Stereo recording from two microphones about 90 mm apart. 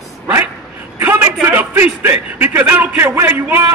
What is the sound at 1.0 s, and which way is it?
A man's voice, 25° right (ahead or behind).